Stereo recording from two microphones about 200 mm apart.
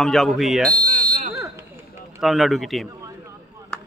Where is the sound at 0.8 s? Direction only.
45° right (ahead or behind).